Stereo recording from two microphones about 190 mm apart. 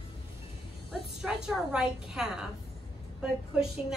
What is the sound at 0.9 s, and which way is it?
A woman's voice, centre (ahead or behind).